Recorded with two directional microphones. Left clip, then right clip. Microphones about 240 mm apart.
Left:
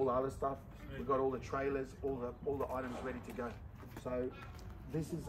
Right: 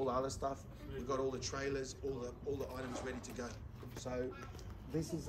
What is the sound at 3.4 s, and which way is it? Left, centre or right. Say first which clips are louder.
Speech: left 3 dB; left.